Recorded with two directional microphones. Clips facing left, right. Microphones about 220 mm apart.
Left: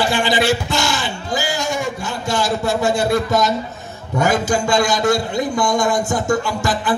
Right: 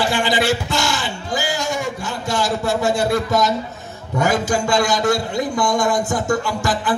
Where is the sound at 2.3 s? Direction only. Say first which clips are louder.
Left 1 dB; 25° left (ahead or behind).